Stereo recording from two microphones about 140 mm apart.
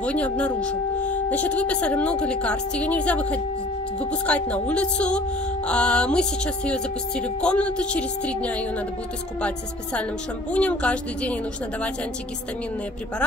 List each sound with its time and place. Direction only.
0.0 s speech: 10° left (ahead or behind)
1.1 s music: 10° left (ahead or behind)
1.6 s speech: 10° left (ahead or behind)
10.5 s speech: 10° left (ahead or behind)